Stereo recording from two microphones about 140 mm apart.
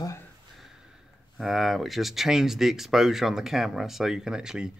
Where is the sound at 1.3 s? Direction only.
Centre (ahead or behind).